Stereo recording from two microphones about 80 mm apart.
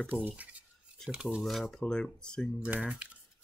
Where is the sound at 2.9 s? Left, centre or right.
Centre.